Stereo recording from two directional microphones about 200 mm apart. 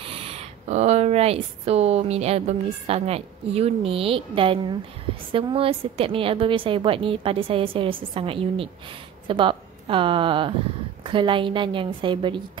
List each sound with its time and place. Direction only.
0.0 s a woman's voice: 30° right (ahead or behind)